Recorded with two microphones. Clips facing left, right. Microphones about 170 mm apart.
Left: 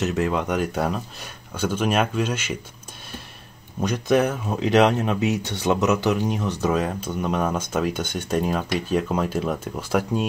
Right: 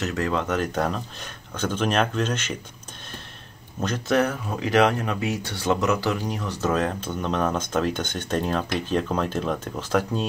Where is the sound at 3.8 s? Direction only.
15° left (ahead or behind).